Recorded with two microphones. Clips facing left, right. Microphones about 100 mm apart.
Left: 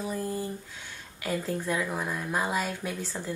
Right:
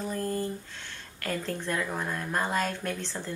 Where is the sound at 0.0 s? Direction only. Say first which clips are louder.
Right 1 dB; 10° left (ahead or behind).